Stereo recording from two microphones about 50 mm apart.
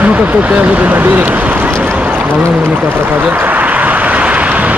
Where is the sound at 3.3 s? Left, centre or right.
Right.